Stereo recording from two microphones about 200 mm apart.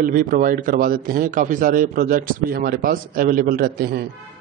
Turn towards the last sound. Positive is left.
turn(degrees=-50)  # may be behind; listen again after turning